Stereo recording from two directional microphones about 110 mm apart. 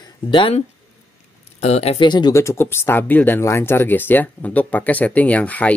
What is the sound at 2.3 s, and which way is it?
Speech, 25° left (ahead or behind).